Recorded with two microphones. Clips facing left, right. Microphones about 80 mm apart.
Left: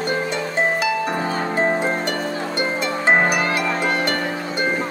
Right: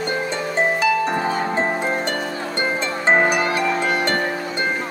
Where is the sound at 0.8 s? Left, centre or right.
Right.